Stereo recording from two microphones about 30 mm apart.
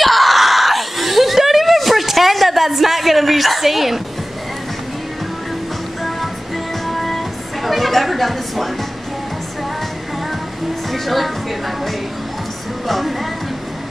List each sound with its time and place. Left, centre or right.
0.0 s a sound: centre
6.9 s music: centre
10.9 s speech: centre